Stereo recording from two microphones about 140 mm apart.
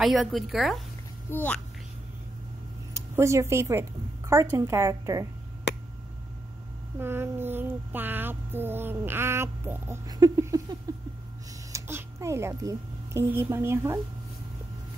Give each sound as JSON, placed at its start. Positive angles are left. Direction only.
{"t": 0.0, "sound": "a woman's voice", "side_deg": 0}
{"t": 1.3, "sound": "a child's voice", "side_deg": 10}
{"t": 3.2, "sound": "speech", "side_deg": -20}
{"t": 7.0, "sound": "speech", "side_deg": -15}
{"t": 10.1, "sound": "a sound", "side_deg": -25}
{"t": 11.7, "sound": "a child's voice", "side_deg": -20}